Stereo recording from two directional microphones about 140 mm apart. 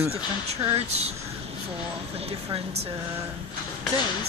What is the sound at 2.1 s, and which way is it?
Speech, 45° right (ahead or behind).